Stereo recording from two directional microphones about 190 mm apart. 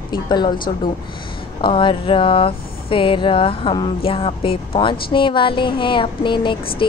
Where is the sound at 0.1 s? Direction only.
25° left (ahead or behind).